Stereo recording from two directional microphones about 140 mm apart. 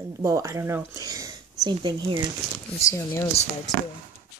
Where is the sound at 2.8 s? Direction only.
25° left (ahead or behind).